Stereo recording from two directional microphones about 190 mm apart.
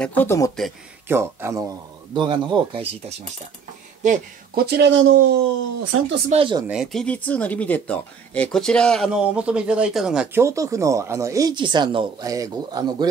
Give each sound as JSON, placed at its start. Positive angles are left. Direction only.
{"t": 0.0, "sound": "speech", "side_deg": 10}
{"t": 1.0, "sound": "speech", "side_deg": -10}
{"t": 4.0, "sound": "speech", "side_deg": -40}
{"t": 4.6, "sound": "speech", "side_deg": -65}
{"t": 5.9, "sound": "speech", "side_deg": -85}
{"t": 6.3, "sound": "speech", "side_deg": -25}
{"t": 6.7, "sound": "speech", "side_deg": 0}
{"t": 10.4, "sound": "speech", "side_deg": -15}